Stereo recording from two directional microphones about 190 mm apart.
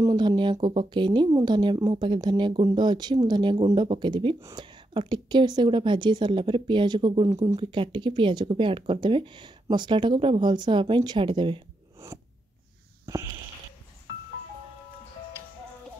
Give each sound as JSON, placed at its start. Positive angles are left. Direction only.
{"t": 0.0, "sound": "a woman's voice", "side_deg": -20}
{"t": 12.0, "sound": "scissors", "side_deg": -15}
{"t": 13.0, "sound": "a sound", "side_deg": -15}